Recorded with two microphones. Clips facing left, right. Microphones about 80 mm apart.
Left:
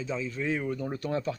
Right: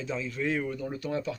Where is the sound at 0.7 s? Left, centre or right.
Left.